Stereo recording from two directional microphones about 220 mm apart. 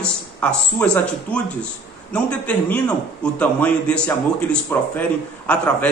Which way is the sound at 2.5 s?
5° left (ahead or behind).